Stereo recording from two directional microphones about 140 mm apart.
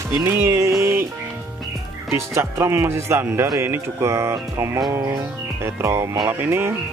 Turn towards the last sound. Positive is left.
turn(degrees=-15)  # may be behind; listen again after turning